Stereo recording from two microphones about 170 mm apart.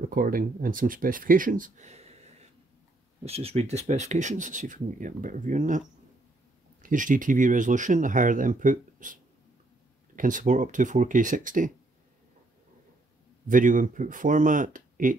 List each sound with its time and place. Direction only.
0.1 s speech: 55° right (ahead or behind); by 2.1 s 40° right (ahead or behind)
3.3 s speech: 35° right (ahead or behind)
13.5 s speech: 50° right (ahead or behind)